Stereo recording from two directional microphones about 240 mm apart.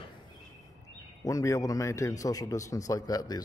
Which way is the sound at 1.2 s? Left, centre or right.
Centre.